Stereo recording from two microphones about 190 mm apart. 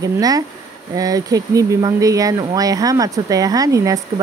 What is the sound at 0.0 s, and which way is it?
Speech, 20° right (ahead or behind).